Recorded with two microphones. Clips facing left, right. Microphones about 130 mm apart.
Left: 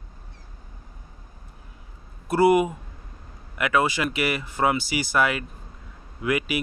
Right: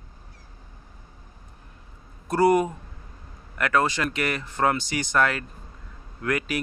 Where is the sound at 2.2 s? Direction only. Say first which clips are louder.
Left 1 dB; 5° left (ahead or behind).